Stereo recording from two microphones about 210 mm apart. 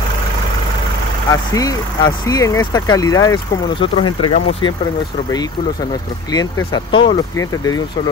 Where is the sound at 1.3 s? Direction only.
15° left (ahead or behind).